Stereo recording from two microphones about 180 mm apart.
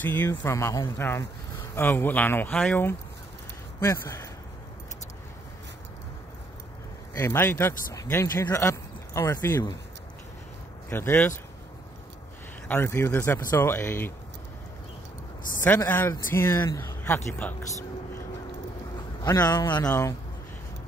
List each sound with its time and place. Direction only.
0.0 s speech: 10° left (ahead or behind)
7.2 s speech: 15° left (ahead or behind)
10.9 s speech: 10° left (ahead or behind)
12.6 s speech: 10° left (ahead or behind)
15.6 s speech: 10° left (ahead or behind)
19.2 s a man's voice: 20° left (ahead or behind)